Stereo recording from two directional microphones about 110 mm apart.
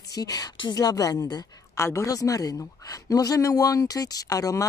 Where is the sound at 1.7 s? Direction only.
25° left (ahead or behind).